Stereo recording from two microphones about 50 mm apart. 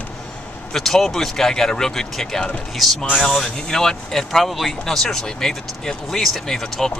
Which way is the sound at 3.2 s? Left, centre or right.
Centre.